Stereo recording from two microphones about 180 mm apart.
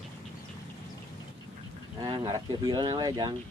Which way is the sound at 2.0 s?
20° right (ahead or behind).